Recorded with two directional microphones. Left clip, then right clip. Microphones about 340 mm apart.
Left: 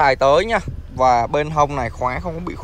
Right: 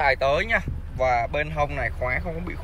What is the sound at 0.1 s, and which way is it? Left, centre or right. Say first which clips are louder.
A man's voice: left 7 dB; centre.